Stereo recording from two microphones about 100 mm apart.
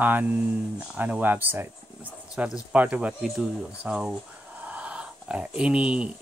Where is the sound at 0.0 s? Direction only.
15° right (ahead or behind).